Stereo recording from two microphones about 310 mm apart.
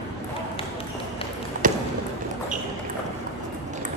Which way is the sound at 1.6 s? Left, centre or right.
Right.